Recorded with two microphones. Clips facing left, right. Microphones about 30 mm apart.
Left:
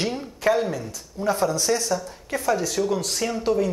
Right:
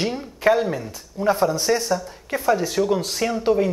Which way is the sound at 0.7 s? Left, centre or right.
Right.